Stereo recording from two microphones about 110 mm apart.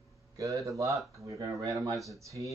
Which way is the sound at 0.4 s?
30° right (ahead or behind).